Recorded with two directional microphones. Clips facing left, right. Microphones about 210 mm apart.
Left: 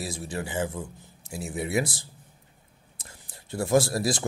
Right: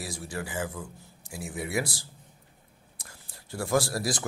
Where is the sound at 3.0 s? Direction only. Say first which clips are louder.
Left 2 dB; 20° left (ahead or behind).